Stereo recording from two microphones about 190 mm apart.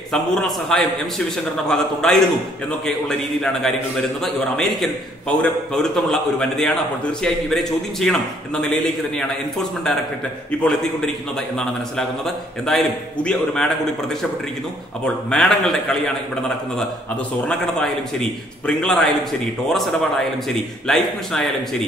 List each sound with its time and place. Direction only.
0.1 s a man's voice: 5° left (ahead or behind)
12.6 s a man's voice: 5° left (ahead or behind)
15.2 s a man's voice: 5° left (ahead or behind)
18.7 s a man's voice: 5° left (ahead or behind)